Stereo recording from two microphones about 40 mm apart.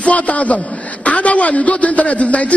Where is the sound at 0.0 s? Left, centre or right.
Left.